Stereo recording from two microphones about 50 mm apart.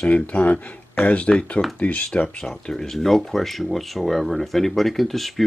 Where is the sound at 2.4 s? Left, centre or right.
Centre.